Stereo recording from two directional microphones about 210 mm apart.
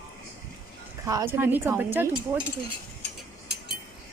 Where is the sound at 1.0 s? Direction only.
15° right (ahead or behind).